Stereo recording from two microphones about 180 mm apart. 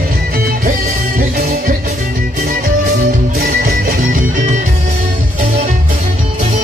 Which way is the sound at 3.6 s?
55° right (ahead or behind).